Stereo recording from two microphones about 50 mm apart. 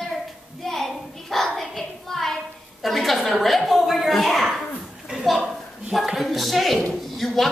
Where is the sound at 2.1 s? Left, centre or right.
Centre.